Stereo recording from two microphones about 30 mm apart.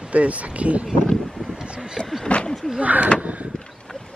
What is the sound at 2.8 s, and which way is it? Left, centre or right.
Speech, right.